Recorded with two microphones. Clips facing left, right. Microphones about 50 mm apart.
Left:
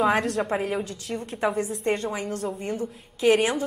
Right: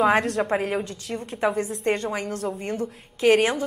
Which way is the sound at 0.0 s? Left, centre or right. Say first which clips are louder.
Right 2 dB; right.